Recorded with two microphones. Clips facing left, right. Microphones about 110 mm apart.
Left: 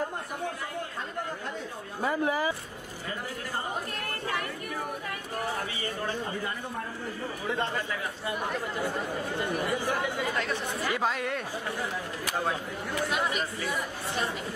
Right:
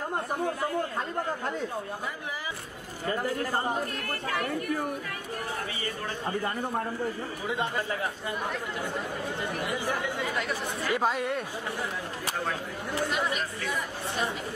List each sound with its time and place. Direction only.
2.0 s speech: 50° left (ahead or behind)
8.3 s speech: centre (ahead or behind)
13.0 s speech: centre (ahead or behind)